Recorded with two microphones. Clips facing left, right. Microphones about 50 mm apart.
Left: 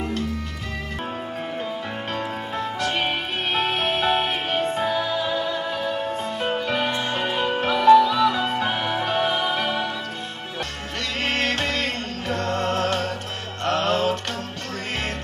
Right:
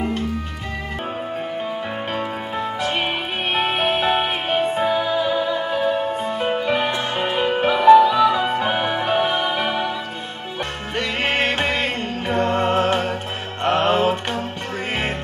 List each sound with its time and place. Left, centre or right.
2.1 s music: centre
11.2 s music: right